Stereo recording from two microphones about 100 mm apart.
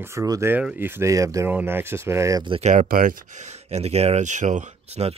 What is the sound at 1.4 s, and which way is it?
Speech, 20° right (ahead or behind).